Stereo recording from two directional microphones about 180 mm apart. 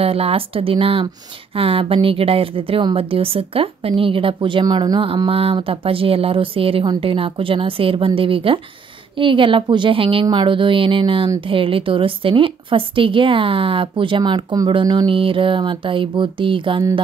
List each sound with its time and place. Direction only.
0.0 s a woman's voice: 30° right (ahead or behind)